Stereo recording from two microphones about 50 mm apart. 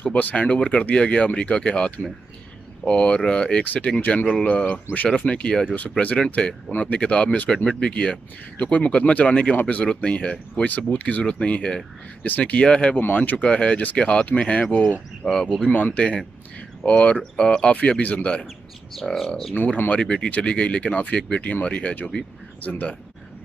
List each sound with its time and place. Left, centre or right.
0.0 s speech: left
3.6 s speech: left
4.3 s speech: centre; by 9.8 s left
10.0 s speech: left
10.5 s speech: left
12.6 s speech: centre
12.9 s speech: left
13.4 s speech: left
15.2 s speech: centre
15.7 s speech: left
17.7 s speech: left
19.1 s speech: centre
19.9 s speech: left